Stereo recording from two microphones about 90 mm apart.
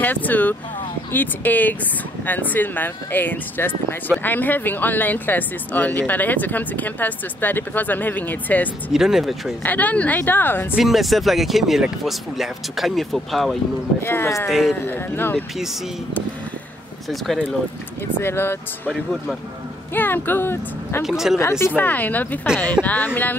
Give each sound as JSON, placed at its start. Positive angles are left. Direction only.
{"t": 0.0, "sound": "speech", "side_deg": 20}
{"t": 8.9, "sound": "speech", "side_deg": -5}
{"t": 9.6, "sound": "speech", "side_deg": 20}
{"t": 10.8, "sound": "speech", "side_deg": 0}
{"t": 14.0, "sound": "speech", "side_deg": 30}
{"t": 14.5, "sound": "speech", "side_deg": 0}
{"t": 14.9, "sound": "speech", "side_deg": 25}
{"t": 18.2, "sound": "speech", "side_deg": 25}
{"t": 19.9, "sound": "speech", "side_deg": 20}
{"t": 21.0, "sound": "speech", "side_deg": -5}
{"t": 21.4, "sound": "speech", "side_deg": 30}